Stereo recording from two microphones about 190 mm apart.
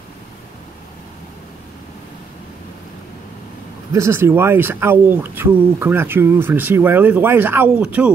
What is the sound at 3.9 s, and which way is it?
Speech, 15° right (ahead or behind).